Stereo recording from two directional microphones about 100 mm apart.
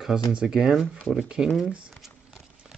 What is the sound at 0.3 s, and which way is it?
Speech, 10° right (ahead or behind).